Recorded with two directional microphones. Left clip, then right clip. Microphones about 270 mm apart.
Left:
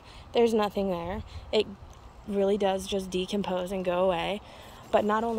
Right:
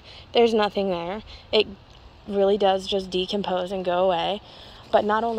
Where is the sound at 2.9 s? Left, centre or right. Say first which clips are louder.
Right 6 dB; centre.